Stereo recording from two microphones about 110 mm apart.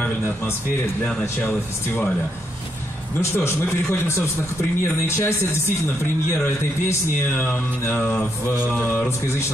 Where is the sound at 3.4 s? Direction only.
20° left (ahead or behind).